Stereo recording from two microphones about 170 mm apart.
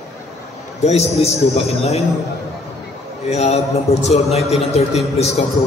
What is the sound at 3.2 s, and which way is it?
A man's voice, 40° left (ahead or behind).